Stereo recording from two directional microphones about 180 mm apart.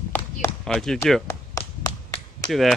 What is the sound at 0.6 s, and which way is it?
Speech, centre (ahead or behind).